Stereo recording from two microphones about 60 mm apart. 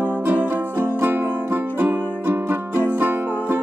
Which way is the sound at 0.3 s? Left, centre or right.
Right.